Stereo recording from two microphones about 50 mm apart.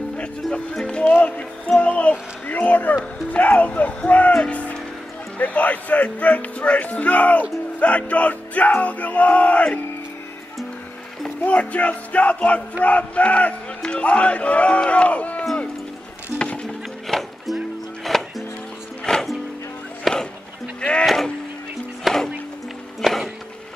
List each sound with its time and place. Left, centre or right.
0.7 s speech: centre
1.0 s speech: left
1.8 s a sound: left
3.2 s music: left
5.4 s speech: left
11.4 s speech: left
16.6 s music: centre
19.1 s music: centre
20.1 s music: centre
21.0 s a sound: centre
22.0 s music: centre